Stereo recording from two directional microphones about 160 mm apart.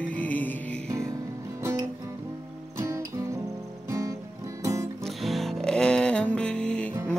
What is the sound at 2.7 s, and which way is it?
Music, 20° right (ahead or behind).